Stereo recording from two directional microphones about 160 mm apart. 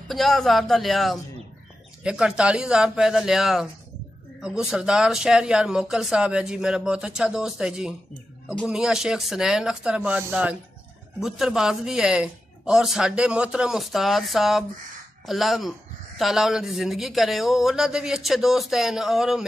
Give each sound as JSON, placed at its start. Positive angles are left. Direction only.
{"t": 0.1, "sound": "speech", "side_deg": 0}